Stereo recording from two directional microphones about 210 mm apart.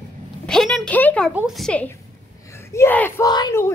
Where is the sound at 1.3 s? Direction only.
Centre (ahead or behind).